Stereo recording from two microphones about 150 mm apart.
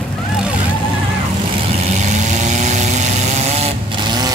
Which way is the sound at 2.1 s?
50° right (ahead or behind).